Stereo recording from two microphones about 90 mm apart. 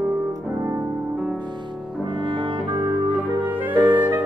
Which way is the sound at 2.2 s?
70° right (ahead or behind).